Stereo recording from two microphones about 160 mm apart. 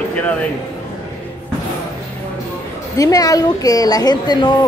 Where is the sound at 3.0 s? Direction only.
20° left (ahead or behind).